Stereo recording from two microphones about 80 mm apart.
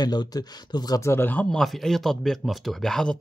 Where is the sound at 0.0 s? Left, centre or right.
Left.